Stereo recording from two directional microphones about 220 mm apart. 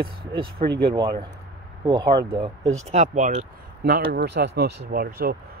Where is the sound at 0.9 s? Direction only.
15° right (ahead or behind).